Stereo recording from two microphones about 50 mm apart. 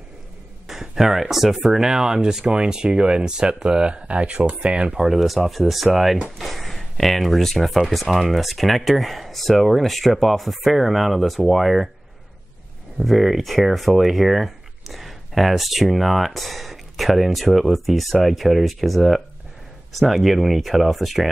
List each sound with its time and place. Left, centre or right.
0.7 s speech: centre; by 5.0 s right
5.0 s speech: centre
13.0 s speech: centre